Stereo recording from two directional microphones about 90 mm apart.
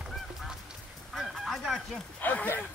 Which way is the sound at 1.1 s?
Centre (ahead or behind).